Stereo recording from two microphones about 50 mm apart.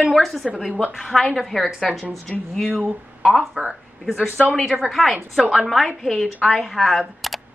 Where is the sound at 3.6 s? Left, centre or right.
Right.